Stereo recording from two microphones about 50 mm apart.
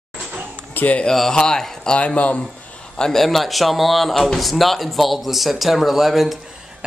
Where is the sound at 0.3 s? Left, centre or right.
Right.